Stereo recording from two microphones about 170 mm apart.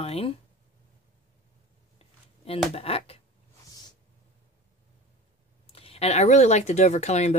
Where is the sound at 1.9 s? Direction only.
35° left (ahead or behind).